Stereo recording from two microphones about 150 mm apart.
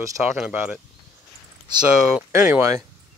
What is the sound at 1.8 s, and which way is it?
Speech, 5° right (ahead or behind).